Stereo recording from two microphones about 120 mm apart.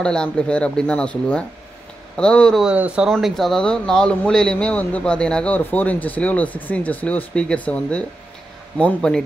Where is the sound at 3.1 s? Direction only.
Centre (ahead or behind).